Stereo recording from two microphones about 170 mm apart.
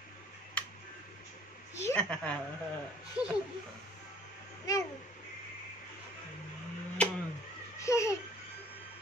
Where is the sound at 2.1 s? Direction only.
5° left (ahead or behind).